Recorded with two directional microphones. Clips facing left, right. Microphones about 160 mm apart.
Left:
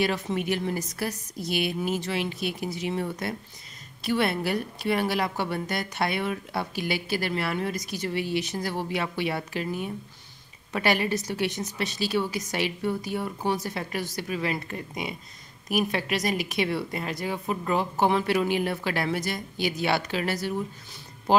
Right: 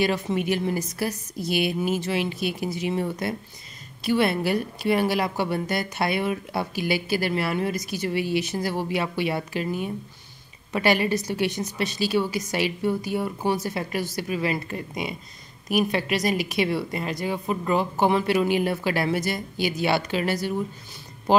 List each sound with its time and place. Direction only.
0.0 s a woman's voice: centre (ahead or behind)